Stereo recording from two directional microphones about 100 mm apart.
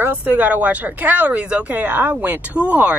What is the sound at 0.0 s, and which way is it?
Speech, 15° right (ahead or behind).